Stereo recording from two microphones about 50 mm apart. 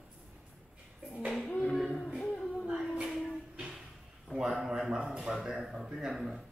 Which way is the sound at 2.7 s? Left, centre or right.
Centre.